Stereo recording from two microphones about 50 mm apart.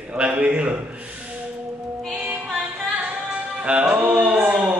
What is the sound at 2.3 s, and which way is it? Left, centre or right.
Music, right.